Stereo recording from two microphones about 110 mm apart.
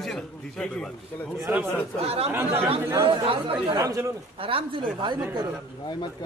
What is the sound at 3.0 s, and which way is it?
Speech, 55° right (ahead or behind).